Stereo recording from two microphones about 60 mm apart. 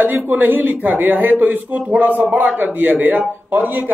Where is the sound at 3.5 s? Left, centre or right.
Right.